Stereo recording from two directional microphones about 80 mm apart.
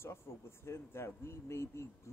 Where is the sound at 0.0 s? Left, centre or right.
Left.